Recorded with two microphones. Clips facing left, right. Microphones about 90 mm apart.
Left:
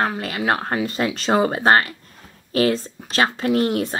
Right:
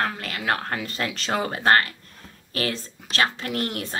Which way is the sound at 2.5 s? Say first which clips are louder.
Left 9 dB; 30° left (ahead or behind).